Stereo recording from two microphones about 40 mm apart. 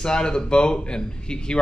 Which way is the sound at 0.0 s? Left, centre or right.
Left.